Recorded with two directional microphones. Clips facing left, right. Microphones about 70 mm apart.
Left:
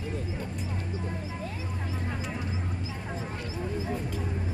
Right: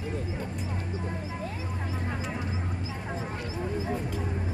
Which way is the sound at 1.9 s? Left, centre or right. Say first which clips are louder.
Right 1 dB; right.